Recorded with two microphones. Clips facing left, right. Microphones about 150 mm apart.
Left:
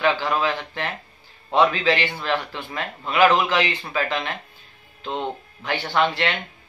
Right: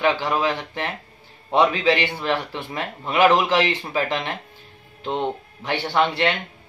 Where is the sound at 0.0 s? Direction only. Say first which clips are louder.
Right 1 dB; 20° right (ahead or behind).